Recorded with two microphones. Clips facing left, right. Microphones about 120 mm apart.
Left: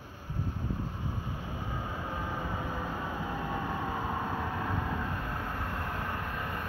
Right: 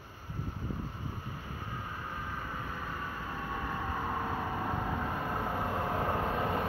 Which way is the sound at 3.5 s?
20° left (ahead or behind).